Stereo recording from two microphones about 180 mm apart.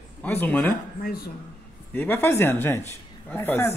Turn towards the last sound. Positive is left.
turn(degrees=15)  # may be behind; listen again after turning